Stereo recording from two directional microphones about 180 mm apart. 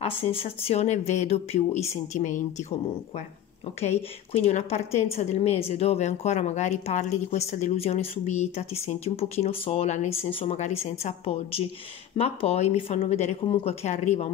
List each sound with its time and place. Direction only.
0.0 s a woman's voice: 35° left (ahead or behind)
3.8 s a woman's voice: 40° left (ahead or behind)